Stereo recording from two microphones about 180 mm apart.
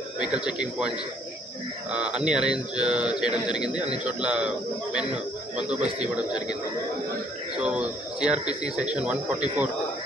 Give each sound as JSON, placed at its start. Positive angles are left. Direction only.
{"t": 0.5, "sound": "speech", "side_deg": -5}
{"t": 7.5, "sound": "a man's voice", "side_deg": -5}